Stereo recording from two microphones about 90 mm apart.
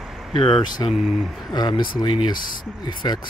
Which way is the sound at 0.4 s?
60° left (ahead or behind).